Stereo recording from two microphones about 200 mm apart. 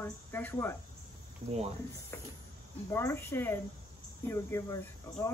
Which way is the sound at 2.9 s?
15° left (ahead or behind).